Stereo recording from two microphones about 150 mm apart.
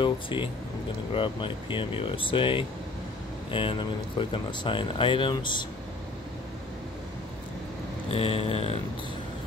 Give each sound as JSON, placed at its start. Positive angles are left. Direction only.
{"t": 0.0, "sound": "speech", "side_deg": 35}
{"t": 8.1, "sound": "speech", "side_deg": 40}